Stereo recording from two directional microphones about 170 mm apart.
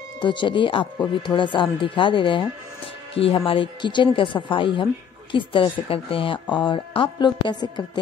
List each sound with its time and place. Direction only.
0.2 s speech: 30° left (ahead or behind)